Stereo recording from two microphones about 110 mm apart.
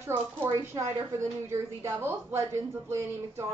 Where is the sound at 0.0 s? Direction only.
25° right (ahead or behind).